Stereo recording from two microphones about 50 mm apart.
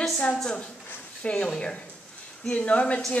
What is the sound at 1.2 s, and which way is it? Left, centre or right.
A woman's voice, left.